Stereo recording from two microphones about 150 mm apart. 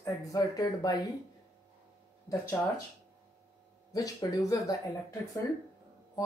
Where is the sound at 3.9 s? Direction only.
25° left (ahead or behind).